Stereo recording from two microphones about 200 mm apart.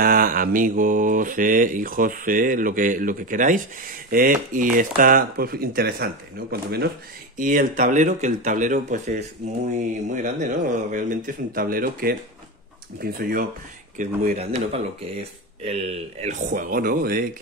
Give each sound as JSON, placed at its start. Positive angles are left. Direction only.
{"t": 0.0, "sound": "mantra", "side_deg": -45}
{"t": 7.3, "sound": "speech", "side_deg": -40}
{"t": 13.0, "sound": "mantra", "side_deg": -45}
{"t": 13.9, "sound": "speech", "side_deg": -35}